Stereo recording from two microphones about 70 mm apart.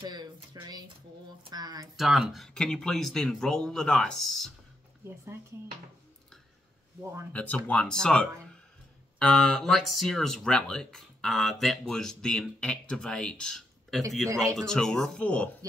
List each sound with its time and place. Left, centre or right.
0.1 s speech: right
2.0 s speech: centre
5.0 s speech: right
7.3 s speech: centre
13.6 s a sound: centre
14.1 s a man's voice: centre